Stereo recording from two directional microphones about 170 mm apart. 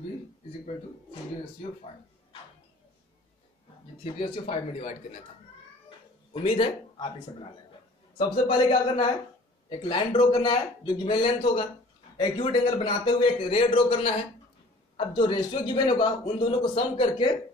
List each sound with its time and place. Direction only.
4.0 s speech: 35° left (ahead or behind)
6.3 s a man's voice: 30° left (ahead or behind)